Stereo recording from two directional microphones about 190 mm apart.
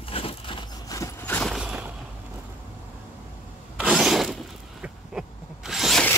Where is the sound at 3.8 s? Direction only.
Centre (ahead or behind).